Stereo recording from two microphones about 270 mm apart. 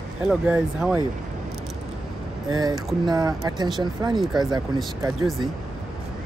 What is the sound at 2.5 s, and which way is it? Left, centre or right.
Speech, centre.